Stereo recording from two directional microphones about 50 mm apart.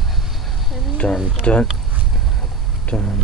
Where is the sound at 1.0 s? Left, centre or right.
Left.